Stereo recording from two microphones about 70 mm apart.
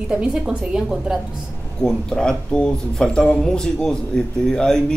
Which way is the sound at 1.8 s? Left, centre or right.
Centre.